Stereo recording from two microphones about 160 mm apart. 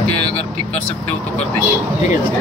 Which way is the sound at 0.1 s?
40° left (ahead or behind).